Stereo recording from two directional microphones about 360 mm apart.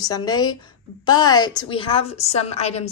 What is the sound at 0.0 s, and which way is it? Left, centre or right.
A woman's voice, centre.